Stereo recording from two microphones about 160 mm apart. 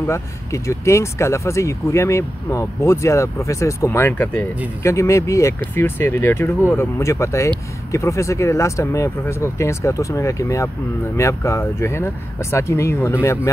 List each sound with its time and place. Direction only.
0.0 s speech: 20° left (ahead or behind)